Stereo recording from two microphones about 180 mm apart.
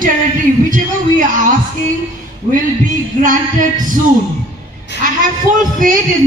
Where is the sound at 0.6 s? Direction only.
45° right (ahead or behind).